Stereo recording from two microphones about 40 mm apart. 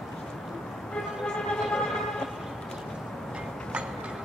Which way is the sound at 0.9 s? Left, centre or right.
Centre.